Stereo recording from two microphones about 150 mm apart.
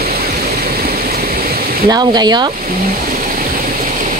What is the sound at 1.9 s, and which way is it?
Speech, 30° right (ahead or behind).